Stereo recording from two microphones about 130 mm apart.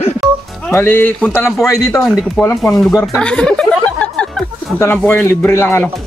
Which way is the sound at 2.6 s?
Centre (ahead or behind).